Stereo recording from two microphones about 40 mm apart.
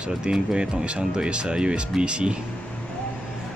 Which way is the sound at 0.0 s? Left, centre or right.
Centre.